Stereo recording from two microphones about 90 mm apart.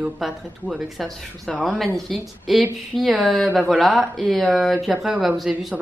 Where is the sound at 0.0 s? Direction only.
5° right (ahead or behind).